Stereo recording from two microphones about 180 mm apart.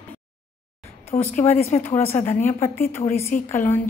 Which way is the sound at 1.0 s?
10° left (ahead or behind).